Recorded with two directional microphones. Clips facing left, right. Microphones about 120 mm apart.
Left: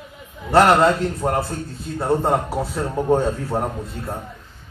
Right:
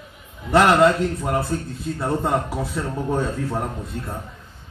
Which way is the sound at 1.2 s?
40° left (ahead or behind).